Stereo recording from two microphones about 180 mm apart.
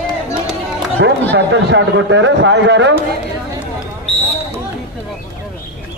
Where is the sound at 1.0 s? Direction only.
75° right (ahead or behind).